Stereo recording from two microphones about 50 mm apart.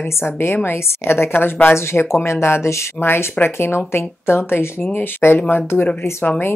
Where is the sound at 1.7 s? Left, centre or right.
Left.